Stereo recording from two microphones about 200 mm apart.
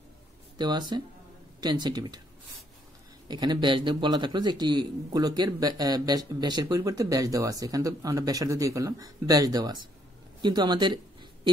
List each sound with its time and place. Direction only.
0.6 s speech: 20° right (ahead or behind)
3.3 s speech: 20° right (ahead or behind)